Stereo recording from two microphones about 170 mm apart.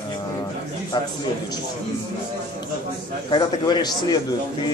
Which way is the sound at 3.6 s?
25° left (ahead or behind).